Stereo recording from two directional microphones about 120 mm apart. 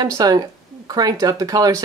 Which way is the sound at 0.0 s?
35° right (ahead or behind).